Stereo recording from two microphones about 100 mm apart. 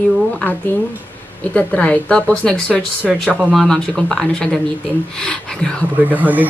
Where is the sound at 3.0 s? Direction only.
5° right (ahead or behind).